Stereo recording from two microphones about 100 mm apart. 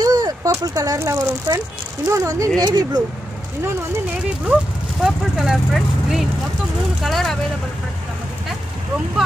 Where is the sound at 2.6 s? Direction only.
45° right (ahead or behind).